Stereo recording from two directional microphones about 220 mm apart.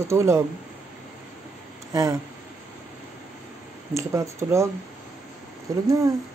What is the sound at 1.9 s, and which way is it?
Speech, 15° right (ahead or behind).